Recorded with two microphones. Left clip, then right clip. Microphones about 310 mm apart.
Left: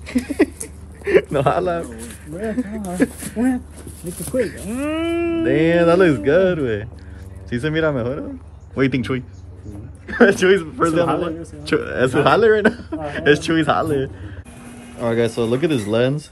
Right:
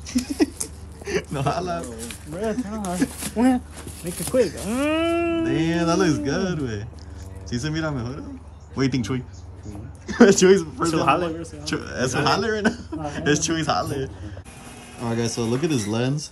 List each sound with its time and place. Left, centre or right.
0.0 s a sound: centre
3.0 s speech: centre
3.3 s a man's voice: right
4.1 s speech: centre
4.7 s speech: right
5.4 s a man's voice: centre
10.0 s a man's voice: right
10.9 s a man's voice: centre